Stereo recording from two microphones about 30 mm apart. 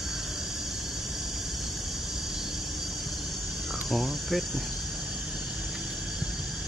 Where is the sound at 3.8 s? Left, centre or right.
Centre.